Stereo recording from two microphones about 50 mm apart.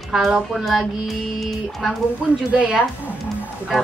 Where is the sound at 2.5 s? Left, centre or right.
Right.